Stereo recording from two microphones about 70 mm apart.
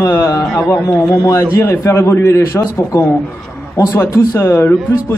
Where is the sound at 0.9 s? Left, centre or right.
Left.